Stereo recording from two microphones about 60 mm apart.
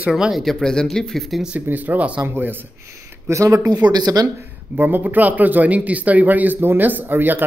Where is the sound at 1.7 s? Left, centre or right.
Right.